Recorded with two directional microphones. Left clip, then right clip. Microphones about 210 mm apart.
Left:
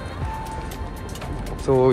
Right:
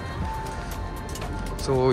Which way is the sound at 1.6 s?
5° right (ahead or behind).